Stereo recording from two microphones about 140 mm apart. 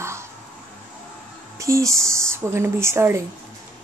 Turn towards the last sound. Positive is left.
turn(degrees=-20)  # may be behind; listen again after turning